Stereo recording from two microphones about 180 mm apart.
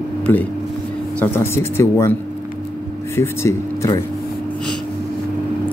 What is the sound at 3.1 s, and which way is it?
Speech, 15° left (ahead or behind).